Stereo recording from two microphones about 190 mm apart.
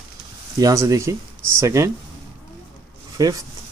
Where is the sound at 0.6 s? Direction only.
20° right (ahead or behind).